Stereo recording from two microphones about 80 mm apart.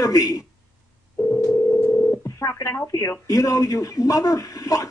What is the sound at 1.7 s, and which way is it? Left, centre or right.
Telephone, left.